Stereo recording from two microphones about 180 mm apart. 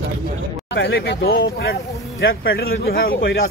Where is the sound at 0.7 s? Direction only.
70° left (ahead or behind).